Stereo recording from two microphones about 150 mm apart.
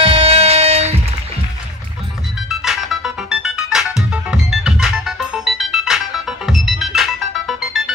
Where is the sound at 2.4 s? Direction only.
Centre (ahead or behind).